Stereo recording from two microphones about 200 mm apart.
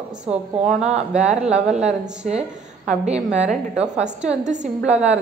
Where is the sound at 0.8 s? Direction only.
35° right (ahead or behind).